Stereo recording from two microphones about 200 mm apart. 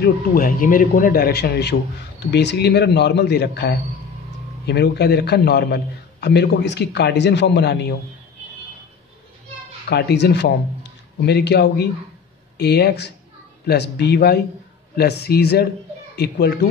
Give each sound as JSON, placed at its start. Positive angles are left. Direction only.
{"t": 0.0, "sound": "a man's voice", "side_deg": 45}
{"t": 9.8, "sound": "a man's voice", "side_deg": 55}